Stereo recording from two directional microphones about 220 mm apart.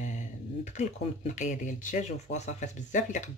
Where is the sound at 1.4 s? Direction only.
35° left (ahead or behind).